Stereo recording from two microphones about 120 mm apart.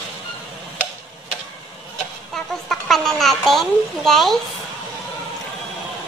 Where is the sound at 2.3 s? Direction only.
5° left (ahead or behind).